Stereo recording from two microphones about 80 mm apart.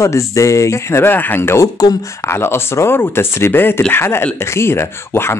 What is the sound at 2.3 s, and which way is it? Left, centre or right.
Speech, left.